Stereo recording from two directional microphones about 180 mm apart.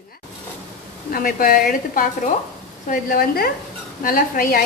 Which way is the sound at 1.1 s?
50° left (ahead or behind).